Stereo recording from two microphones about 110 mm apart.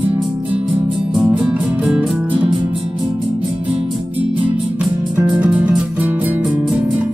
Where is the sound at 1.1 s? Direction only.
5° right (ahead or behind).